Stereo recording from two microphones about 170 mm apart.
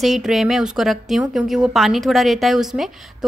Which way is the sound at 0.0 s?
Centre (ahead or behind).